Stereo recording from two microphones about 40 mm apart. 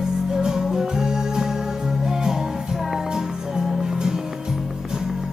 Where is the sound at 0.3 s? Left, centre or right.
Centre.